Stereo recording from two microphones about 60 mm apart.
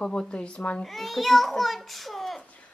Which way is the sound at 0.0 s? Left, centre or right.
Centre.